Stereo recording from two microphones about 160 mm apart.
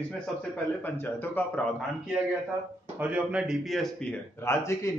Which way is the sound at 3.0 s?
5° right (ahead or behind).